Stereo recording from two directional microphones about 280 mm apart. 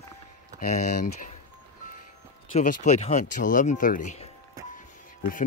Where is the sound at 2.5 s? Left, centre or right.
Left.